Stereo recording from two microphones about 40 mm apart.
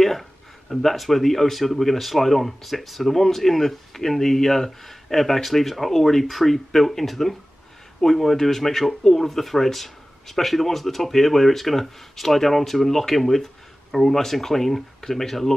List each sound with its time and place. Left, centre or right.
0.0 s speech: centre